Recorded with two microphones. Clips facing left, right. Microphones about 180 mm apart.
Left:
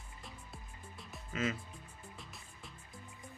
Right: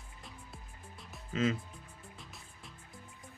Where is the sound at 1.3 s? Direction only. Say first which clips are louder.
Right 5 dB; 30° right (ahead or behind).